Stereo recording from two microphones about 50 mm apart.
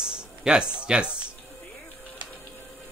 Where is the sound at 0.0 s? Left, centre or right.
Centre.